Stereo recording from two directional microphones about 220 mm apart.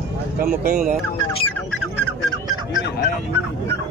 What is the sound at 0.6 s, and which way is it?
Speech, 40° right (ahead or behind).